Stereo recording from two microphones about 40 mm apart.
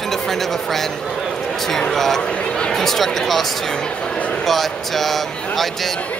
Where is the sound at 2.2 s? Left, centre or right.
Left.